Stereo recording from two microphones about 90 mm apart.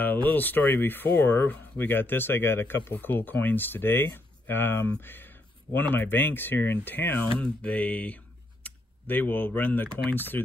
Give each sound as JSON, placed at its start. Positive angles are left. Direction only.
{"t": 0.0, "sound": "speech", "side_deg": 20}
{"t": 7.3, "sound": "mantra", "side_deg": 15}
{"t": 8.6, "sound": "speech", "side_deg": 20}